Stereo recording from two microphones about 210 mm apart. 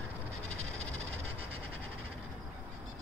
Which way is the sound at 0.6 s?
30° right (ahead or behind).